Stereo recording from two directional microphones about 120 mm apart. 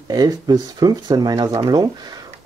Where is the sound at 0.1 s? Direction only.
35° right (ahead or behind).